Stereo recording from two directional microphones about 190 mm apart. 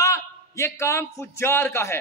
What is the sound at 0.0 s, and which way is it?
A man's voice, 15° left (ahead or behind).